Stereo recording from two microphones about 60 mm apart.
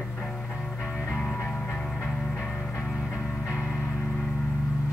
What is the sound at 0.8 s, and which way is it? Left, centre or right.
Music, left.